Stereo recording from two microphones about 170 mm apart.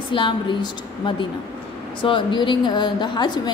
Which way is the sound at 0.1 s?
30° left (ahead or behind).